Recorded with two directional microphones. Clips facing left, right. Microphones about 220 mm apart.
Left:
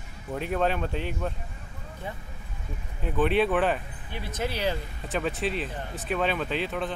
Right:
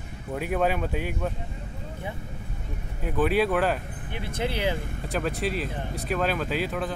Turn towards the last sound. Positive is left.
turn(degrees=-5)  # may be behind; listen again after turning